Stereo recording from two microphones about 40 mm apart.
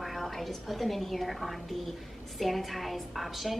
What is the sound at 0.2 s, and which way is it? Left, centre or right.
A woman's voice, centre.